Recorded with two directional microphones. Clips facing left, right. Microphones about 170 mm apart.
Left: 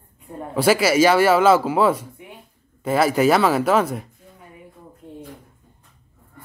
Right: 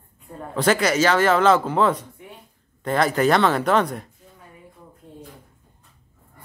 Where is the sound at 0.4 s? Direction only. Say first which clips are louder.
Left 2 dB; 10° left (ahead or behind).